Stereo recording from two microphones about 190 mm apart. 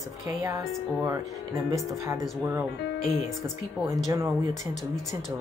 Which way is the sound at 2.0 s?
15° right (ahead or behind).